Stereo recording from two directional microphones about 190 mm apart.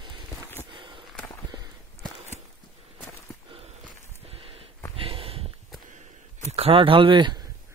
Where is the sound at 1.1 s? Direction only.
10° left (ahead or behind).